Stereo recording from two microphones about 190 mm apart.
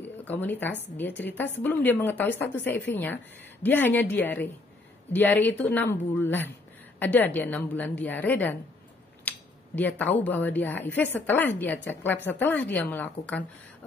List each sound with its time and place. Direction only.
0.0 s a woman's voice: 10° left (ahead or behind)
9.3 s a sound: 10° left (ahead or behind)
9.8 s a woman's voice: 10° left (ahead or behind)